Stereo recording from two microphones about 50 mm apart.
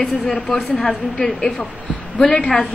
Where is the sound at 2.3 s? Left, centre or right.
Left.